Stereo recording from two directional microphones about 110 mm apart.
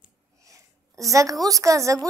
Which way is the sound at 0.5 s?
30° right (ahead or behind).